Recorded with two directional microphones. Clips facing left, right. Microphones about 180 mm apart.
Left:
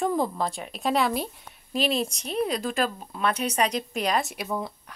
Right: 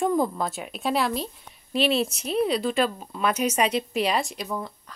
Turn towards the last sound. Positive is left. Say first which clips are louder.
# left 1 dB
turn(degrees=10)  # may be behind; listen again after turning